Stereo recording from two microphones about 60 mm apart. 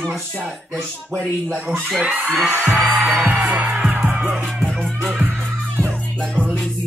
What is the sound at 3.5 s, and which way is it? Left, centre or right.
Music, right.